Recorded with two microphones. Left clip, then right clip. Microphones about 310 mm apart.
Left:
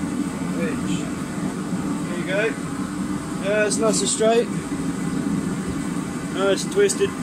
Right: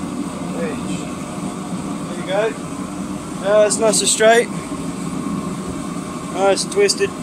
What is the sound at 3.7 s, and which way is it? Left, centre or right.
Speech, right.